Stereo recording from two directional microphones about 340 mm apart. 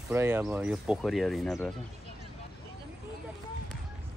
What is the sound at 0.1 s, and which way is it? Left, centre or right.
Speech, centre.